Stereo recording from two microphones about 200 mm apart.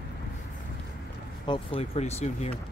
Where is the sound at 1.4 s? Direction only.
25° left (ahead or behind).